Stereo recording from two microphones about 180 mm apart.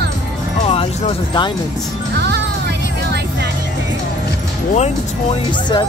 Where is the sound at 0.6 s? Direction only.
30° left (ahead or behind).